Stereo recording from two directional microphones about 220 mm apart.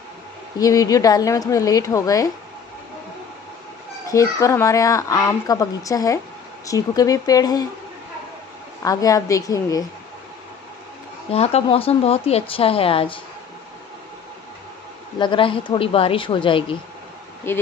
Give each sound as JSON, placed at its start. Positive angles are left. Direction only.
{"t": 0.6, "sound": "a woman's voice", "side_deg": 15}
{"t": 4.1, "sound": "a woman's voice", "side_deg": 15}
{"t": 8.8, "sound": "a woman's voice", "side_deg": 15}
{"t": 11.3, "sound": "speech", "side_deg": 30}
{"t": 15.1, "sound": "speech", "side_deg": 20}
{"t": 17.4, "sound": "a woman's voice", "side_deg": 10}